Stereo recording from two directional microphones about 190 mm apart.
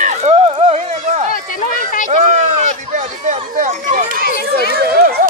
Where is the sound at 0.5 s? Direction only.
35° right (ahead or behind).